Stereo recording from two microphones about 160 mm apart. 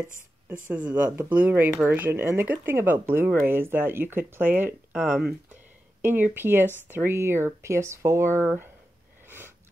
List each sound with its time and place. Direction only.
0.7 s speech: 10° right (ahead or behind)
4.9 s speech: centre (ahead or behind)
6.0 s speech: 10° right (ahead or behind)